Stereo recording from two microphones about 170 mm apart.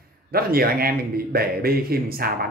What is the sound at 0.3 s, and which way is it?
A man's voice, 60° right (ahead or behind).